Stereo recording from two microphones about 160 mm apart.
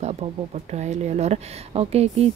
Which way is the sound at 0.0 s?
40° right (ahead or behind).